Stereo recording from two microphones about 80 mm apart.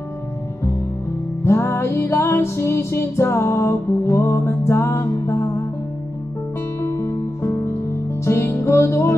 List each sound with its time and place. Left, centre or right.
1.4 s music: left
6.8 s music: left